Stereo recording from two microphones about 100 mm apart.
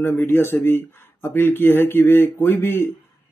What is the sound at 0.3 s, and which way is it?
Speech, 25° left (ahead or behind).